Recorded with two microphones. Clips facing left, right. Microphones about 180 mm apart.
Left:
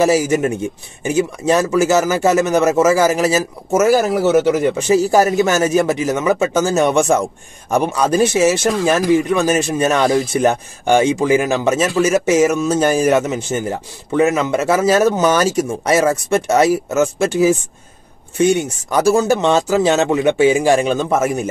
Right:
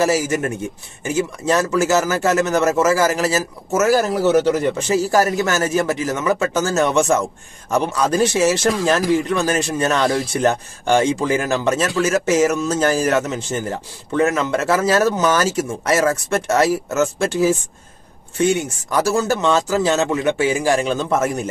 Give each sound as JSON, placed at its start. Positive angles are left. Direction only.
{"t": 0.0, "sound": "a man's voice", "side_deg": 15}
{"t": 4.2, "sound": "speech", "side_deg": 50}
{"t": 4.5, "sound": "a man's voice", "side_deg": 10}
{"t": 18.4, "sound": "a man's voice", "side_deg": 15}